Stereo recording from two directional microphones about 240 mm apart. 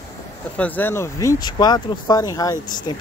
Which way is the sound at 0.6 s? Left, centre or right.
Centre.